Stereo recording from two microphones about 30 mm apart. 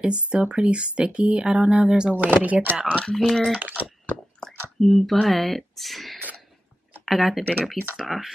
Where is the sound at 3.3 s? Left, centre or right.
Centre.